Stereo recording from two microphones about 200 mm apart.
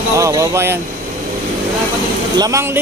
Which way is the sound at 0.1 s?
15° right (ahead or behind).